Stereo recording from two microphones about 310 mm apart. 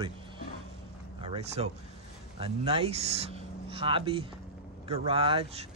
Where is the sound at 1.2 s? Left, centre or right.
Centre.